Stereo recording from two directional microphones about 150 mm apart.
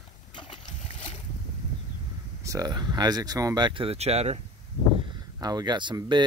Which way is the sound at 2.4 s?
20° right (ahead or behind).